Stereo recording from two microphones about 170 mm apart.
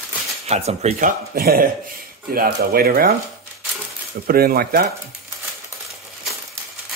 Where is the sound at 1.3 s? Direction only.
65° right (ahead or behind).